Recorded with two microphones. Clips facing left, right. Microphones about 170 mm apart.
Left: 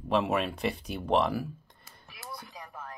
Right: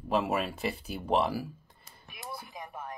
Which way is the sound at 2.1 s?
20° right (ahead or behind).